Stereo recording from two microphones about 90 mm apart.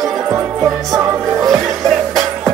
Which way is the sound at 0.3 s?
35° right (ahead or behind).